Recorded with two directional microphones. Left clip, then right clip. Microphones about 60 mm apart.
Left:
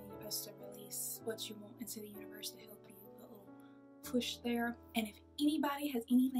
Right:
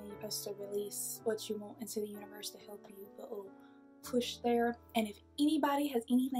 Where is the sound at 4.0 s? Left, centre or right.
Right.